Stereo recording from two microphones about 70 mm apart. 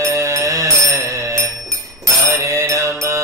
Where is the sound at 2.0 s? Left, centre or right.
Right.